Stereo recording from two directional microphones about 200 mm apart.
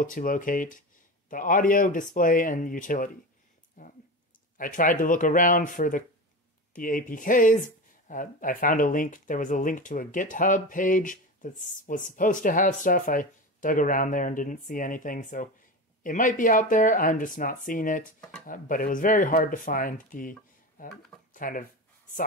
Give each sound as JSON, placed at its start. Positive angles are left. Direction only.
{"t": 0.0, "sound": "speech", "side_deg": 40}